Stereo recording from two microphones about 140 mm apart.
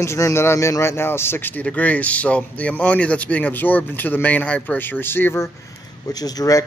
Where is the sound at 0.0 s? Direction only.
20° left (ahead or behind).